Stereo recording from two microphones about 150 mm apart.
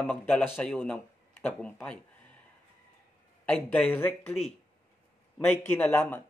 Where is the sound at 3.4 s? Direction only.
10° left (ahead or behind).